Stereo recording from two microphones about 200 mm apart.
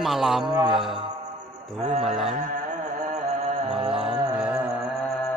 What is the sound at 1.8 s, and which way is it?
Mantra, 30° right (ahead or behind).